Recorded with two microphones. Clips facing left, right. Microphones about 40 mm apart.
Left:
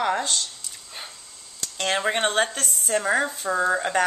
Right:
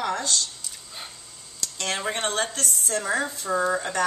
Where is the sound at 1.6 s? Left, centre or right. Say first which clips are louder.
Left 4 dB; left.